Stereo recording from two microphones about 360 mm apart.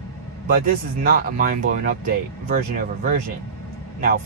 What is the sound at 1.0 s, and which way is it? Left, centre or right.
Speech, right.